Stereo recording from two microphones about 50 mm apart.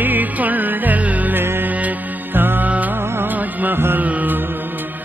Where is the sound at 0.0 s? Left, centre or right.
Right.